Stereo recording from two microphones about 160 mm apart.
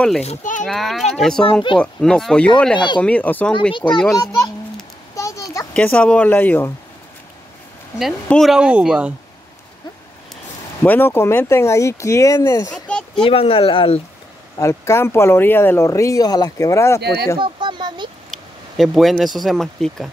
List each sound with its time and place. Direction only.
0.2 s a child's voice: 45° left (ahead or behind)
0.7 s speech: centre (ahead or behind)
5.1 s a sound: 20° left (ahead or behind)
5.7 s speech: 5° left (ahead or behind)
8.0 s speech: centre (ahead or behind)
10.3 s speech: 10° left (ahead or behind)
12.7 s a sound: 5° left (ahead or behind)
13.1 s speech: 35° left (ahead or behind)
14.6 s speech: 20° left (ahead or behind)
17.0 s speech: 90° right
17.4 s a sound: 30° right (ahead or behind)
18.3 s speech: centre (ahead or behind)